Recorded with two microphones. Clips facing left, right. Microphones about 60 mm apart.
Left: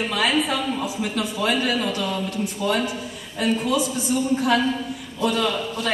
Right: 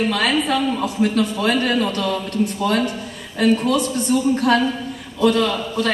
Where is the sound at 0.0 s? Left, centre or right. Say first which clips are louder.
Right 3 dB; centre.